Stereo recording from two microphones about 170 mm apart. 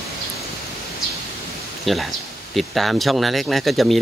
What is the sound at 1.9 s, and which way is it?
Speech, centre (ahead or behind).